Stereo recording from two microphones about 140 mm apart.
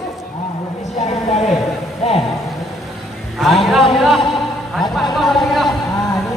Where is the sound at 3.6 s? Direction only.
Centre (ahead or behind).